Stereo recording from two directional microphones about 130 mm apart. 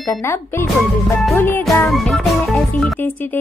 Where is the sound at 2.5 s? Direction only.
10° left (ahead or behind).